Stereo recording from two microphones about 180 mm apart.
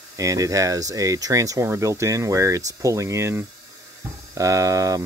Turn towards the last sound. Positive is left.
turn(degrees=-20)  # may be behind; listen again after turning